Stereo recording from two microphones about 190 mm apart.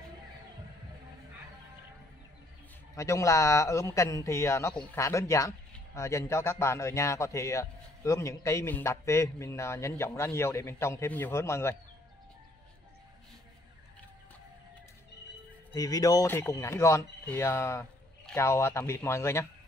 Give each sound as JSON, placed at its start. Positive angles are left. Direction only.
{"t": 3.0, "sound": "a man's voice", "side_deg": 15}
{"t": 15.7, "sound": "a man's voice", "side_deg": 20}